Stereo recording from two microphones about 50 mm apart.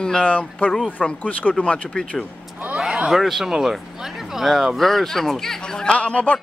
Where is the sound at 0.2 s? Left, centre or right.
Left.